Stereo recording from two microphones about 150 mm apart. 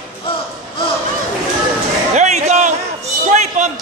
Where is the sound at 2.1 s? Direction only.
55° right (ahead or behind).